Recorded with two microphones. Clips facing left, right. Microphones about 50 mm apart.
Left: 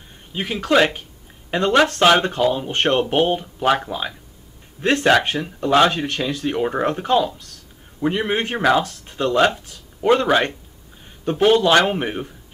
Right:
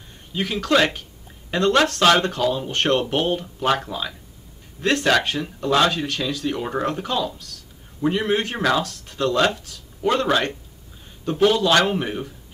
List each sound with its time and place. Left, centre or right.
0.3 s speech: left
3.6 s speech: centre; by 6.6 s left
6.6 s speech: left
8.0 s speech: centre
11.2 s speech: left